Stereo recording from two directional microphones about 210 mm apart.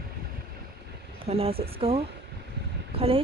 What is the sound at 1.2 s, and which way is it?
Speech, 30° right (ahead or behind).